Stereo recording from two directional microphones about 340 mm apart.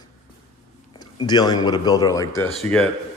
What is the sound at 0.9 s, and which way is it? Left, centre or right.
Speech, centre.